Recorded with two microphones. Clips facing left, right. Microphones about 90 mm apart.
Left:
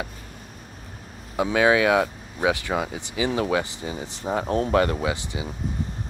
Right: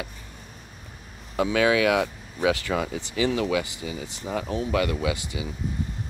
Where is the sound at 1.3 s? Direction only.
25° left (ahead or behind).